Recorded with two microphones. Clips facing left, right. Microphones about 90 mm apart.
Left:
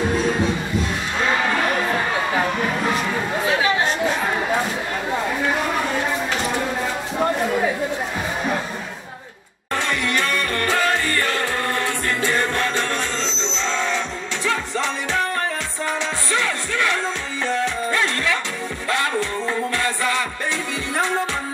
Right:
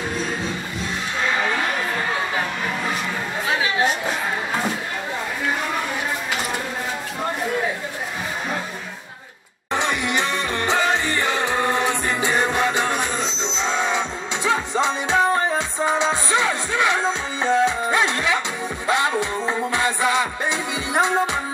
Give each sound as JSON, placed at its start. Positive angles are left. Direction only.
{"t": 9.8, "sound": "music", "side_deg": -20}